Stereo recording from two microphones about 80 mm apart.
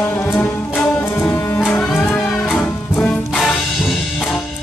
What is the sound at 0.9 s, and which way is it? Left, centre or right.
Music, left.